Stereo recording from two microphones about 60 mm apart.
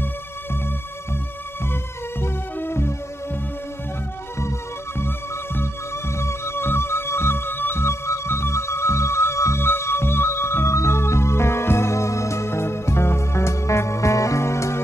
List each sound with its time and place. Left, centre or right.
1.6 s music: left
4.4 s music: left